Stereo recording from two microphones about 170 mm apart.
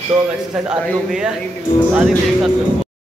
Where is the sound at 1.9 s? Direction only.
Centre (ahead or behind).